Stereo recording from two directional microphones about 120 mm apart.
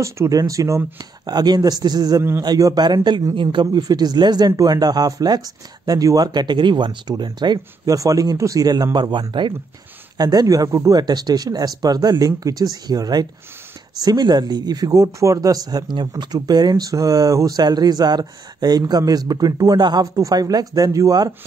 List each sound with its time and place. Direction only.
0.0 s speech: 30° right (ahead or behind)